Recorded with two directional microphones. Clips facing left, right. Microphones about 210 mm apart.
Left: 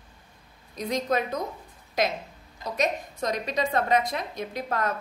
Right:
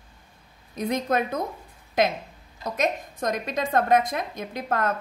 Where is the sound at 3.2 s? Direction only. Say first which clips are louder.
Right 1 dB; 50° right (ahead or behind).